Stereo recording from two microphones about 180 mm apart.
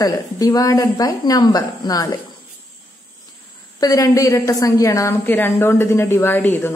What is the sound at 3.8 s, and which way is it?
A woman's voice, 20° left (ahead or behind).